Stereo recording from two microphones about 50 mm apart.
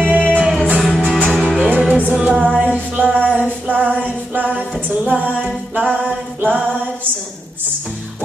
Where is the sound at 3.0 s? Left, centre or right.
Centre.